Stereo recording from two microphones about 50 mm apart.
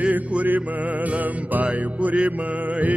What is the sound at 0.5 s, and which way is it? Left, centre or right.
Music, right.